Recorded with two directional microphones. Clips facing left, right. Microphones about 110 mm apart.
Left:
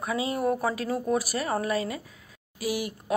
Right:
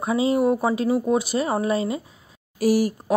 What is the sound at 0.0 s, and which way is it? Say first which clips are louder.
Speech: right 7 dB; 25° right (ahead or behind).